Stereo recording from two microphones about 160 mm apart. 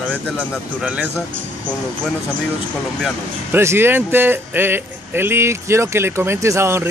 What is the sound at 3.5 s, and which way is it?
Speech, 15° right (ahead or behind).